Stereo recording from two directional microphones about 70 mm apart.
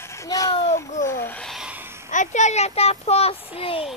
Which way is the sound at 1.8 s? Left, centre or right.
Right.